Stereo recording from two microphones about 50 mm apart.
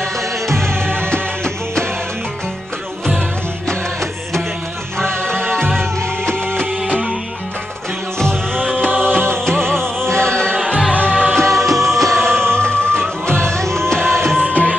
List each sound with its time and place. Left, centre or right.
0.0 s music: centre
3.6 s music: centre
8.2 s music: centre
10.9 s music: left
11.3 s music: centre